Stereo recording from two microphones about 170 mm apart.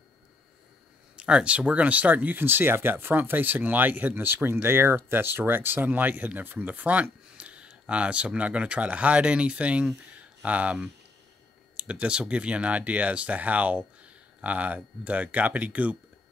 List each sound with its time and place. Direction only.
1.1 s speech: 5° right (ahead or behind)